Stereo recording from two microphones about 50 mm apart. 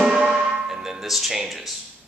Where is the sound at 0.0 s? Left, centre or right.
Centre.